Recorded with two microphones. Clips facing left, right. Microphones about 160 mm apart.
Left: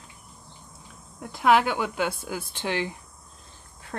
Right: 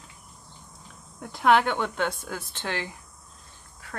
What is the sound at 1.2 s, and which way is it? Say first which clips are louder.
Speech: even; centre (ahead or behind).